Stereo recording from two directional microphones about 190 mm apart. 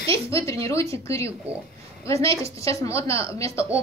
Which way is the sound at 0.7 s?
15° left (ahead or behind).